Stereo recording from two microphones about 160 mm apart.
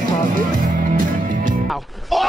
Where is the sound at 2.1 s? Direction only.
Centre (ahead or behind).